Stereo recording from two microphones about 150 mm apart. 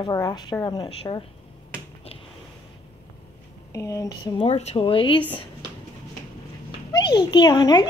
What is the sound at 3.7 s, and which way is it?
Speech, 20° left (ahead or behind).